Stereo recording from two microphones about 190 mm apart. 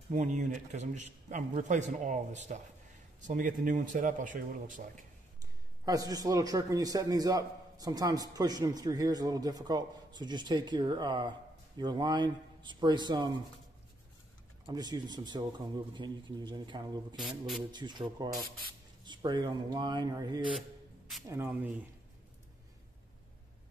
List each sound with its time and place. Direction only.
0.1 s a man's voice: 40° right (ahead or behind)
5.9 s a man's voice: 20° right (ahead or behind)
14.7 s a man's voice: 20° right (ahead or behind)
17.2 s speech: centre (ahead or behind)
17.6 s a man's voice: 25° right (ahead or behind)
21.3 s speech: 10° right (ahead or behind)